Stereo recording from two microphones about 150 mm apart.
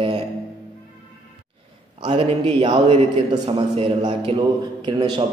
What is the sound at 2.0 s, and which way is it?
A man's voice, 40° right (ahead or behind).